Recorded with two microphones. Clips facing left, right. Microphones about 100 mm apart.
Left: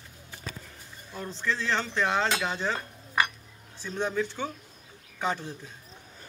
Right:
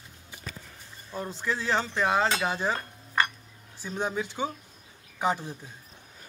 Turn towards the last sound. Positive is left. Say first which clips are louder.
# right 3 dB
turn(degrees=-15)  # may be behind; listen again after turning